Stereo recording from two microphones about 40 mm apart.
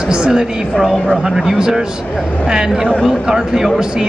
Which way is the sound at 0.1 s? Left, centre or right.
Right.